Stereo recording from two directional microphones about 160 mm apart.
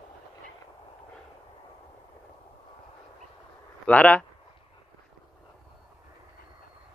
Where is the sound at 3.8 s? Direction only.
10° left (ahead or behind).